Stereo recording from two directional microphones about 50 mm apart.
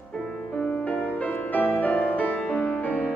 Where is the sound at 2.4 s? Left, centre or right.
Left.